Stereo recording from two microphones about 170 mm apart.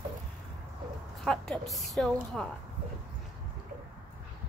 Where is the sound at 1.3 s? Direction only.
Centre (ahead or behind).